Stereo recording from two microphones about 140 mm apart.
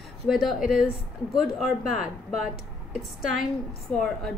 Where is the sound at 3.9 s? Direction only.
5° left (ahead or behind).